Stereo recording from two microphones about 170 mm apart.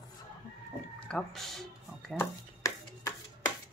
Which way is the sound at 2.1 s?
15° left (ahead or behind).